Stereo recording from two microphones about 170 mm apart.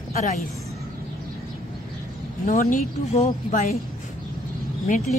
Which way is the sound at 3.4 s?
45° left (ahead or behind).